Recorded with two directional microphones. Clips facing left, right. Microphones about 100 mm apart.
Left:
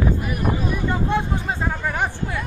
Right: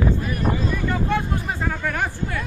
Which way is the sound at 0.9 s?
20° left (ahead or behind).